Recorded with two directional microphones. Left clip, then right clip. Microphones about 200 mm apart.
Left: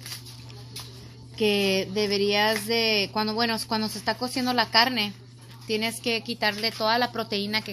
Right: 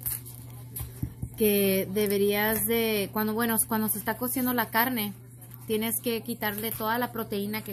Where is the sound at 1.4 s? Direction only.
5° left (ahead or behind).